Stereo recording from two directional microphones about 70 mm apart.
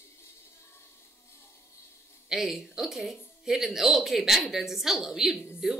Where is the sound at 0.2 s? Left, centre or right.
Left.